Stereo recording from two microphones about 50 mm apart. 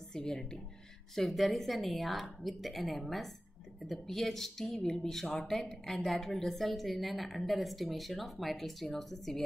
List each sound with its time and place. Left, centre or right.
0.1 s a woman's voice: centre